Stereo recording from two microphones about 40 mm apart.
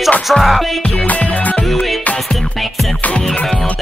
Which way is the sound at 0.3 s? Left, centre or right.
Centre.